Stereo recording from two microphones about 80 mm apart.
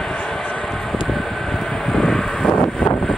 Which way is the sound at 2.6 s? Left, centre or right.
Left.